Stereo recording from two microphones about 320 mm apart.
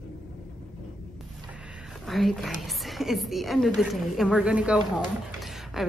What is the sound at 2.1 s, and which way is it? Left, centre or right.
A woman's voice, centre.